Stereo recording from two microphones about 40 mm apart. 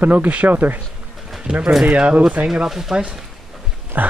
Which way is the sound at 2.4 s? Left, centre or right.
Centre.